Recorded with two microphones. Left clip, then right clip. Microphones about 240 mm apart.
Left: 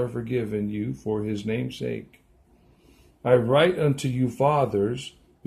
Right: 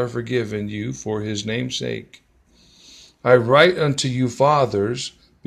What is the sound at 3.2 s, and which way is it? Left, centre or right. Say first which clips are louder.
Speech: right 6 dB; centre.